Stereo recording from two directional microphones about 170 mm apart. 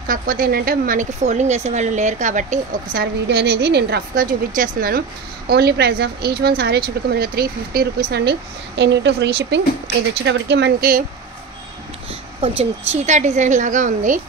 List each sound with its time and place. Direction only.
0.1 s speech: 55° right (ahead or behind)
1.2 s a woman's voice: 40° right (ahead or behind)
2.9 s a woman's voice: 75° right (ahead or behind)
4.1 s speech: 55° right (ahead or behind)
5.5 s a woman's voice: 70° right (ahead or behind)
12.1 s a woman's voice: 35° right (ahead or behind)